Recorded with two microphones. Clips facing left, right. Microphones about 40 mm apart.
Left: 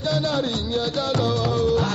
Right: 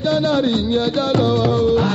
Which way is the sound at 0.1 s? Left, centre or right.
Right.